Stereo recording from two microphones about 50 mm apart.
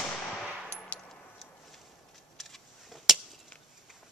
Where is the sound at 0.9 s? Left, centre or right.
Left.